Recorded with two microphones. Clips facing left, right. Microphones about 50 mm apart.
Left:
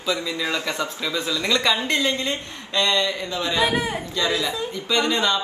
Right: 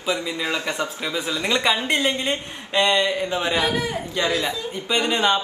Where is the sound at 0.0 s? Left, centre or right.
Right.